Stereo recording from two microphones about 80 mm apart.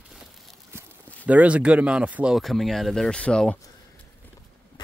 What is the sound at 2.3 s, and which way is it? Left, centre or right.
Speech, centre.